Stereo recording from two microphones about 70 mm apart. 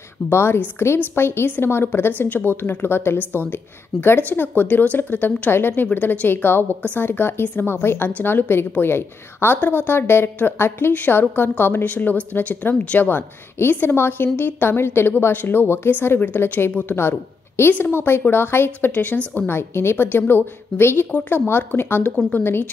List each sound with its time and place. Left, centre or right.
0.3 s a woman's voice: left